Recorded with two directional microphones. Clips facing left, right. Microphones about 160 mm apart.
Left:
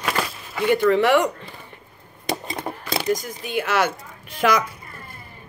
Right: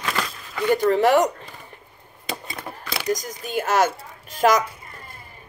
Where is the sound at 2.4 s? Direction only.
25° left (ahead or behind).